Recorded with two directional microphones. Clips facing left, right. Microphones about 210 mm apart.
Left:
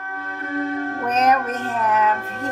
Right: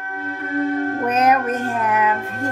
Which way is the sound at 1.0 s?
10° right (ahead or behind).